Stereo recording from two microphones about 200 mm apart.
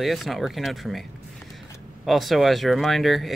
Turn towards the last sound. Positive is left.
turn(degrees=0)  # may be behind; listen again after turning